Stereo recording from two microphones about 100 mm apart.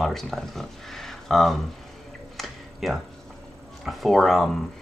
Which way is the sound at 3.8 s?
Centre (ahead or behind).